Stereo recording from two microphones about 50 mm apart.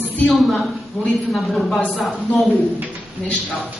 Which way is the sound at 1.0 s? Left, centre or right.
Centre.